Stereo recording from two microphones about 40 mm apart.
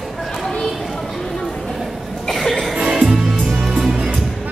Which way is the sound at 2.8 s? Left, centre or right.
Right.